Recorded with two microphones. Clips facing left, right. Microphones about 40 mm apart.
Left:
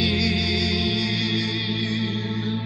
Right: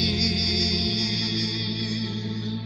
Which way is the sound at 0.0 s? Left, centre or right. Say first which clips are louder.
Left 3 dB; left.